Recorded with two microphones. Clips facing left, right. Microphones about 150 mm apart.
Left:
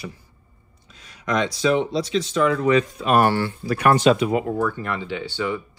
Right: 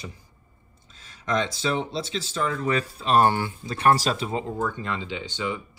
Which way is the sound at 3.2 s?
15° right (ahead or behind).